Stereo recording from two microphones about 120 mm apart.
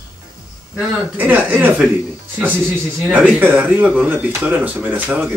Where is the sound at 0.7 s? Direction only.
15° right (ahead or behind).